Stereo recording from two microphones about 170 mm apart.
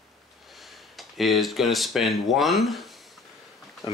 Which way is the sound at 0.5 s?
Centre (ahead or behind).